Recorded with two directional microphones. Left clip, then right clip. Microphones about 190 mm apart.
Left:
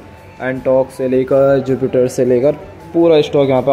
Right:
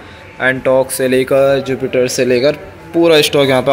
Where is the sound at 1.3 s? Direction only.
30° left (ahead or behind).